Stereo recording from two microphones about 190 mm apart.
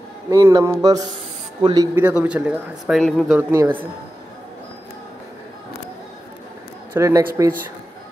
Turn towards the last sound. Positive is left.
turn(degrees=-15)  # may be behind; listen again after turning